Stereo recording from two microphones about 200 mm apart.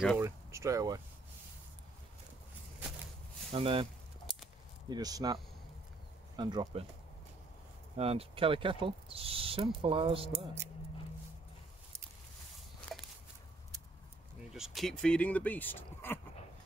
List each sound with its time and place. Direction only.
0.2 s speech: 15° right (ahead or behind)
3.5 s speech: 25° right (ahead or behind)
4.8 s speech: 20° right (ahead or behind)
8.0 s speech: 30° right (ahead or behind)
14.5 s speech: centre (ahead or behind)